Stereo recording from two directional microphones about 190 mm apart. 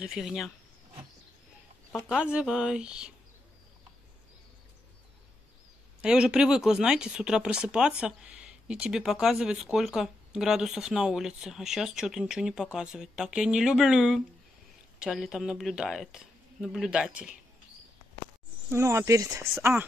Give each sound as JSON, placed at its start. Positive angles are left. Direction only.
{"t": 0.0, "sound": "speech", "side_deg": -5}
{"t": 1.9, "sound": "speech", "side_deg": 0}
{"t": 5.9, "sound": "speech", "side_deg": -5}
{"t": 18.7, "sound": "speech", "side_deg": -15}